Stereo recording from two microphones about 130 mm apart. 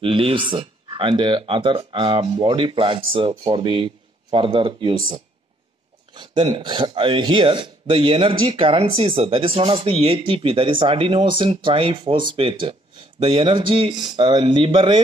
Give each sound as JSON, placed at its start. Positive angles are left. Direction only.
{"t": 0.0, "sound": "speech", "side_deg": -40}